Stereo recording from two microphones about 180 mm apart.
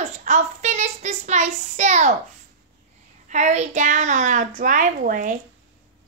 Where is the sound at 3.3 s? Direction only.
40° right (ahead or behind).